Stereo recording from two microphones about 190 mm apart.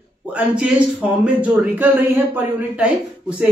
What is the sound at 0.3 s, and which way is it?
Speech, 5° right (ahead or behind).